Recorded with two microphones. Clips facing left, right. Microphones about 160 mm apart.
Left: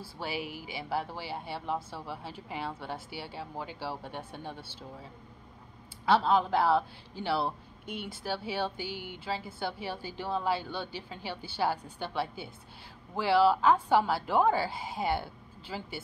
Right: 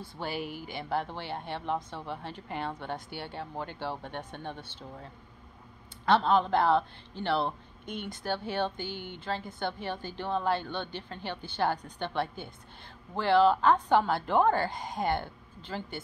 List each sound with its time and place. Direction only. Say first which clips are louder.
0.0 s a woman's voice: right 1 dB; 5° left (ahead or behind)